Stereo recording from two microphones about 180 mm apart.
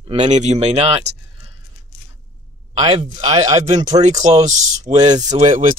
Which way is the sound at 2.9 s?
40° right (ahead or behind).